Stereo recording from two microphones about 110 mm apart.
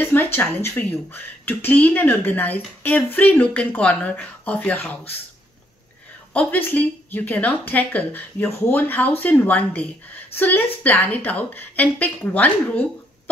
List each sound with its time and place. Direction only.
0.0 s speech: 20° left (ahead or behind)
6.3 s speech: 15° left (ahead or behind)